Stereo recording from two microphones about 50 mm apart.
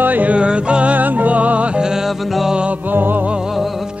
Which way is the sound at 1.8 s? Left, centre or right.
Centre.